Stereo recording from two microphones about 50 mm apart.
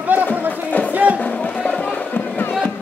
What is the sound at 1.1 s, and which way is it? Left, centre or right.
Music, left.